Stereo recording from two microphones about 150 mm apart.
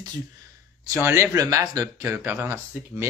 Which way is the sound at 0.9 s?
15° right (ahead or behind).